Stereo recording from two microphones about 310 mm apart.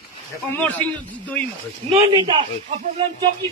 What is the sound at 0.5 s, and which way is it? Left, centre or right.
Speech, centre.